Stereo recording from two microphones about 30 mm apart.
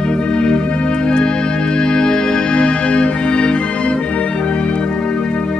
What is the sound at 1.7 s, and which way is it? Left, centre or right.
Music, left.